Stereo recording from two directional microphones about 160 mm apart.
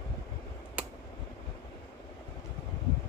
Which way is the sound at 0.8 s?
10° right (ahead or behind).